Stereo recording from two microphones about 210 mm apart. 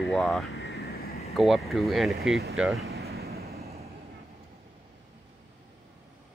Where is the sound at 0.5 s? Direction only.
50° left (ahead or behind).